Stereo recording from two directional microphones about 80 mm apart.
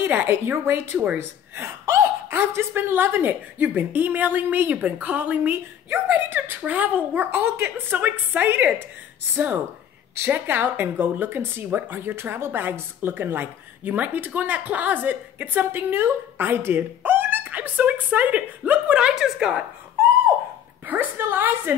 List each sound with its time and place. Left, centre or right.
0.0 s speech: right; by 19.6 s centre
20.8 s speech: right